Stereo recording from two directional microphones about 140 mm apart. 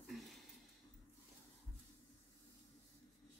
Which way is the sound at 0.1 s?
Centre (ahead or behind).